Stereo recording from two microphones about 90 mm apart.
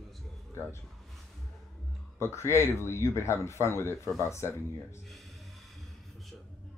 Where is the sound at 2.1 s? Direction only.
30° left (ahead or behind).